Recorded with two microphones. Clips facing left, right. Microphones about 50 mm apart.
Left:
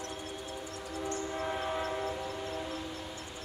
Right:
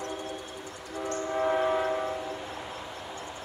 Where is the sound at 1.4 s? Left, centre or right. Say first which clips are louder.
Right 11 dB; centre.